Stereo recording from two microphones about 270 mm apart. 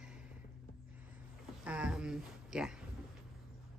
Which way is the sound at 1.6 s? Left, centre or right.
Centre.